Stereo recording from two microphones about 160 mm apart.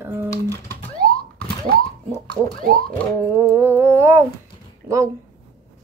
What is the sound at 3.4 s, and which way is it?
Speech, 15° right (ahead or behind).